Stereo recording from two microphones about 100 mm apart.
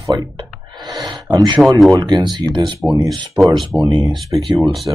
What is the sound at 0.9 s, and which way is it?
Speech, 45° right (ahead or behind).